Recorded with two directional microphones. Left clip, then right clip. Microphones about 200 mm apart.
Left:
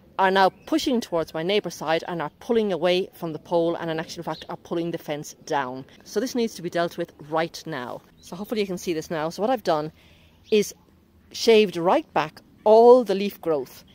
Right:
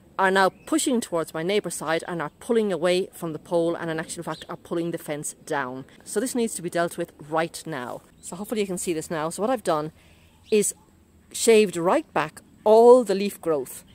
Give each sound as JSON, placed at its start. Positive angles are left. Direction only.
{"t": 0.1, "sound": "speech", "side_deg": 0}